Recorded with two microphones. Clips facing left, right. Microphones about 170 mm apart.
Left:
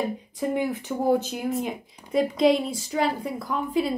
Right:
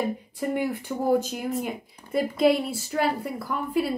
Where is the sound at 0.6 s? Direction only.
10° right (ahead or behind).